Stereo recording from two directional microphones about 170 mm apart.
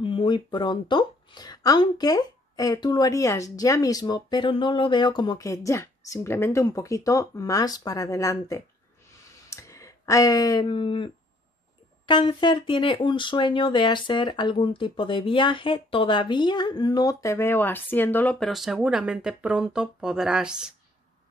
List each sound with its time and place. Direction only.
0.0 s speech: 30° left (ahead or behind)
12.1 s speech: 25° left (ahead or behind); by 20.7 s 5° right (ahead or behind)